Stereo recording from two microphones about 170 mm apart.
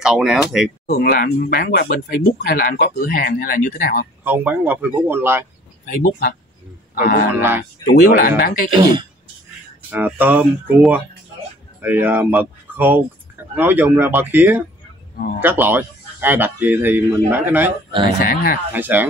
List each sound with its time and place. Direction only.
0.0 s speech: 5° right (ahead or behind)
0.8 s speech: 55° left (ahead or behind)
4.2 s a man's voice: 10° right (ahead or behind)
5.9 s speech: 65° left (ahead or behind)
7.3 s a man's voice: 10° right (ahead or behind)
7.8 s speech: 65° left (ahead or behind)
8.7 s speech: 30° right (ahead or behind)
9.8 s a man's voice: 10° right (ahead or behind)
18.2 s speech: 55° left (ahead or behind)
18.7 s a man's voice: 10° right (ahead or behind)